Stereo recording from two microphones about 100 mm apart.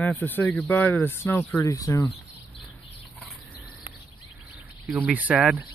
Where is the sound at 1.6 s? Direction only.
35° left (ahead or behind).